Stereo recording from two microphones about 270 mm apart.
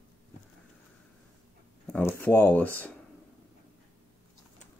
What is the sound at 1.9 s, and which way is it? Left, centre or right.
Speech, centre.